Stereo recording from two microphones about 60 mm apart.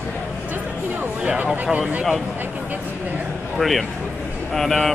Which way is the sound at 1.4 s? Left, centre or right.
Centre.